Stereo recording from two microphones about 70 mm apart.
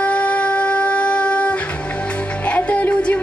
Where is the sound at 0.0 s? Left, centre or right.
Centre.